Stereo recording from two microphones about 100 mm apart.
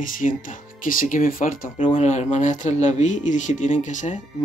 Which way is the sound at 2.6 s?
90° left.